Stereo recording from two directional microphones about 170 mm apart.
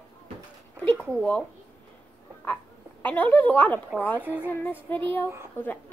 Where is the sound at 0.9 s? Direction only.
10° left (ahead or behind).